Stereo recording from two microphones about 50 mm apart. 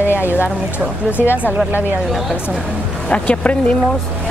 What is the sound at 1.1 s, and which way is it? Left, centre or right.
Speech, left.